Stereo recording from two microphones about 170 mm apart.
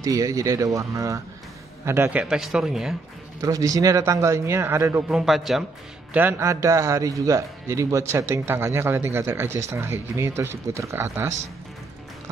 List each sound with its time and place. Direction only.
0.0 s a man's voice: 20° right (ahead or behind); by 3.0 s centre (ahead or behind)
3.3 s speech: 20° right (ahead or behind)
5.1 s a man's voice: centre (ahead or behind)
6.1 s speech: 15° right (ahead or behind)